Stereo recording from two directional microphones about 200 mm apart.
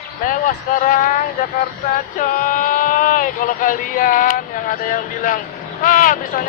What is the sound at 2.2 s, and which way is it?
Speech, 40° left (ahead or behind).